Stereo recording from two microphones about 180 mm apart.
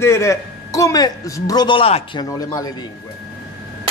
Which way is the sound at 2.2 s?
20° left (ahead or behind).